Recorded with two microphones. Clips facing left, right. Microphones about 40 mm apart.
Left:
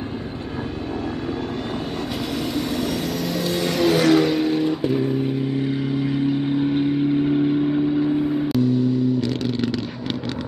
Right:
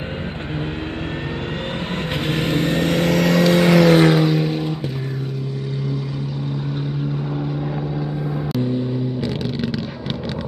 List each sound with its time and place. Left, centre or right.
2.3 s vehicle: right
4.1 s vehicle: centre
6.2 s vehicle: left